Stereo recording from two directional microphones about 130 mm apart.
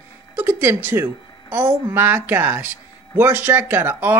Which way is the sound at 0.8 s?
15° right (ahead or behind).